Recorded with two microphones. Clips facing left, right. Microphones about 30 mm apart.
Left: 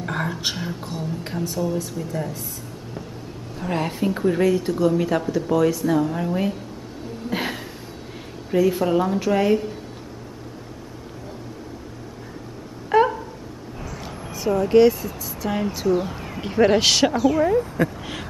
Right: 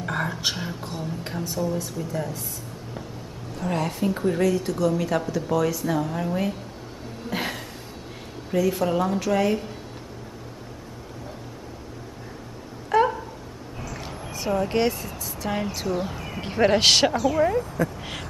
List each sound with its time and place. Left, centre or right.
0.0 s speech: centre
3.6 s a woman's voice: centre
7.2 s a sound: centre
8.5 s a woman's voice: centre
12.9 s a sound: centre
14.0 s speech: centre
17.1 s a woman's voice: centre
17.8 s speech: left